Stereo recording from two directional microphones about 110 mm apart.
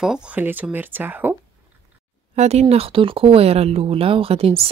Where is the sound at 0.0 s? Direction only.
5° right (ahead or behind).